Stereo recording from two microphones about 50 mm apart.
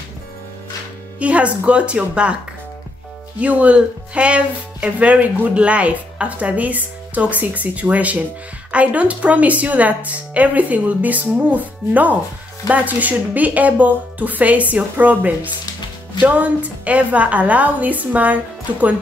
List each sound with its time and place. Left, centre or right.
1.2 s a woman's voice: right
3.3 s a woman's voice: right